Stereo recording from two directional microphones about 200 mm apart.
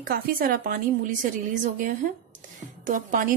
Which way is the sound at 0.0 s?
45° right (ahead or behind).